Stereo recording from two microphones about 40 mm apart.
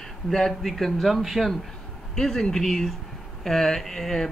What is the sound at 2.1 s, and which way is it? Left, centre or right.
Speech, centre.